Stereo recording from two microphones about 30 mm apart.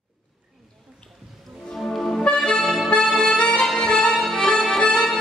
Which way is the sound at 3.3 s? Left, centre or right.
Left.